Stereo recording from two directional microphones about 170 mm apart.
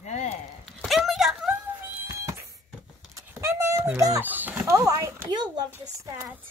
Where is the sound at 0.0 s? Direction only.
40° left (ahead or behind).